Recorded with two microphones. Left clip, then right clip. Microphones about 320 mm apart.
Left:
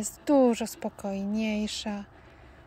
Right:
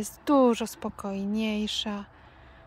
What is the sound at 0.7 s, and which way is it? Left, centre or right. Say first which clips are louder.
Speech: left 1 dB; centre.